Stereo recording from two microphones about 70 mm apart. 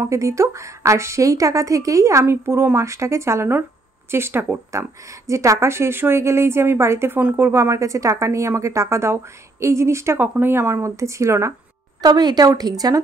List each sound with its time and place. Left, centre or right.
0.0 s speech: right
2.2 s speech: right
4.7 s speech: right
7.7 s speech: right
10.1 s speech: right
12.0 s speech: right